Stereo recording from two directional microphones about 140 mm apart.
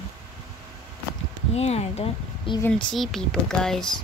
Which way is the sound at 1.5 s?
50° left (ahead or behind).